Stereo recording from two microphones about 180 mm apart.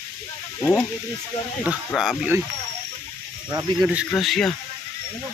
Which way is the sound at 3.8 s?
5° right (ahead or behind).